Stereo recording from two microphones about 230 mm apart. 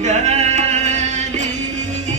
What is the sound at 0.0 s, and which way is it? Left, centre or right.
Music, right.